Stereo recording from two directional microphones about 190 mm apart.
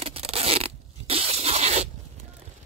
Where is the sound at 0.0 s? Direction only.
30° right (ahead or behind).